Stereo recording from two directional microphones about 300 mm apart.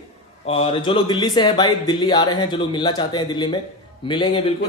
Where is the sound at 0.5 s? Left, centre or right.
Centre.